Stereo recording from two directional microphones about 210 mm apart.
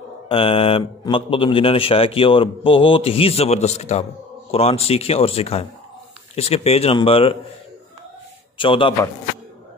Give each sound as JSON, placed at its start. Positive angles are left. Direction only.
{"t": 0.3, "sound": "speech", "side_deg": 25}
{"t": 8.5, "sound": "speech", "side_deg": 25}